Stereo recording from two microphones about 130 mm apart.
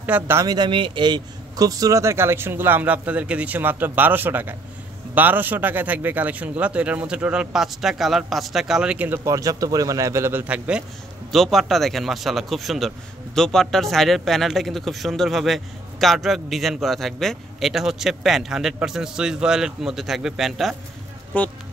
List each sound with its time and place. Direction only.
0.0 s a man's voice: 15° right (ahead or behind)
0.5 s a man's voice: 35° right (ahead or behind); by 10.8 s 10° right (ahead or behind)
11.3 s speech: centre (ahead or behind)
21.3 s speech: 10° left (ahead or behind)